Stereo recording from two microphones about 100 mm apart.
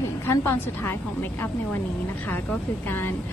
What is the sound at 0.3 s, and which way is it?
Speech, 25° left (ahead or behind).